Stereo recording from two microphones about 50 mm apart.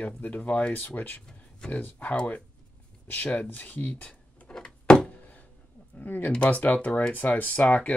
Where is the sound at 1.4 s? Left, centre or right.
Left.